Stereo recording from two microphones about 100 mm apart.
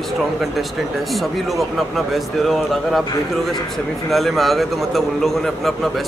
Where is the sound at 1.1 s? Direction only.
Centre (ahead or behind).